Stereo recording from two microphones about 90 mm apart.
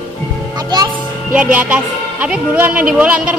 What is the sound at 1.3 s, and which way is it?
A man's voice, 15° right (ahead or behind).